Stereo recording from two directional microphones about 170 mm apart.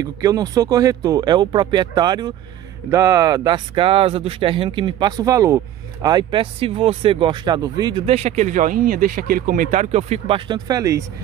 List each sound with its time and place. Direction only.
0.0 s speech: 20° right (ahead or behind)
8.1 s speech: 40° right (ahead or behind)
10.7 s speech: 20° right (ahead or behind)